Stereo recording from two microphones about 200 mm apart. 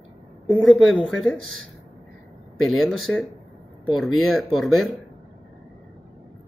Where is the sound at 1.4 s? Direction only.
90° right.